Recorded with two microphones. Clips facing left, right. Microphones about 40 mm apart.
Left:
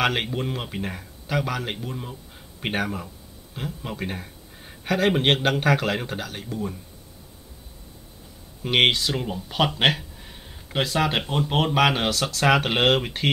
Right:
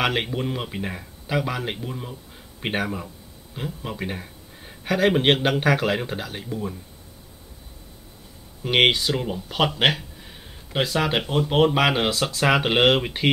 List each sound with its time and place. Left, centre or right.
0.0 s speech: centre
5.4 s speech: centre
5.8 s speech: centre
8.6 s speech: centre
9.8 s a sound: centre
11.3 s speech: centre
11.7 s speech: centre